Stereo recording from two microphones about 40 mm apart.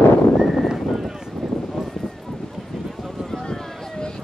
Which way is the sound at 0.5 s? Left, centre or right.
Centre.